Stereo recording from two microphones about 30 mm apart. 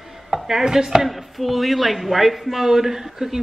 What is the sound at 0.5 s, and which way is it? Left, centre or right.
Speech, centre.